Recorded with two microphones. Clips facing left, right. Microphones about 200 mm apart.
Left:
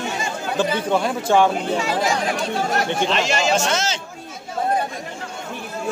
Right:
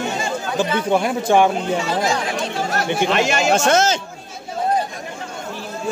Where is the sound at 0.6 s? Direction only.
10° right (ahead or behind).